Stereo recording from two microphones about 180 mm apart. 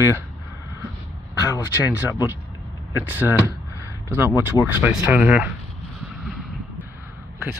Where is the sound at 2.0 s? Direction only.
10° right (ahead or behind).